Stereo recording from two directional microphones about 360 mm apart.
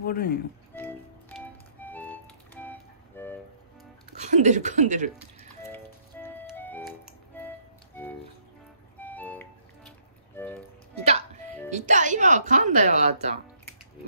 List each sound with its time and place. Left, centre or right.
0.0 s speech: left
1.4 s music: centre
4.2 s speech: centre
5.6 s music: centre
8.9 s music: centre
11.7 s speech: centre